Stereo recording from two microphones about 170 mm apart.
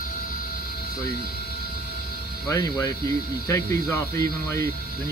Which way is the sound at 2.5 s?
20° left (ahead or behind).